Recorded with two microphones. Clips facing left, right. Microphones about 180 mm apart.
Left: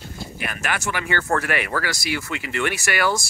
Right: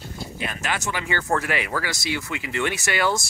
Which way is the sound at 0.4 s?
20° right (ahead or behind).